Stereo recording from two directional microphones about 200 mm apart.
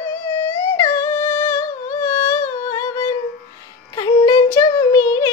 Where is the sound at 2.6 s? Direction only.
15° left (ahead or behind).